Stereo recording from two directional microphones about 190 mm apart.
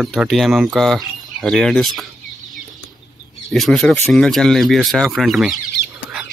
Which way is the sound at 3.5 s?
Centre (ahead or behind).